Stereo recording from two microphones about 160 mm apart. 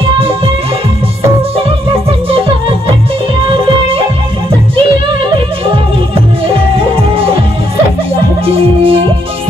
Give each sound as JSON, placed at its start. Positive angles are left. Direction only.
{"t": 1.9, "sound": "music", "side_deg": -35}
{"t": 6.4, "sound": "music", "side_deg": -35}
{"t": 8.5, "sound": "music", "side_deg": -35}